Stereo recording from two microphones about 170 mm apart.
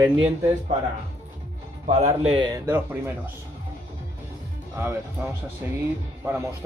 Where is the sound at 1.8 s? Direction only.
40° right (ahead or behind).